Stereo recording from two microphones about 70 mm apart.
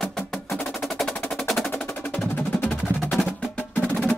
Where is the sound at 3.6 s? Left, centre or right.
Left.